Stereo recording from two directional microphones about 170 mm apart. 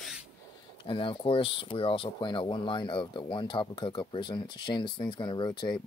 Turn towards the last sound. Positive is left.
turn(degrees=25)  # may be behind; listen again after turning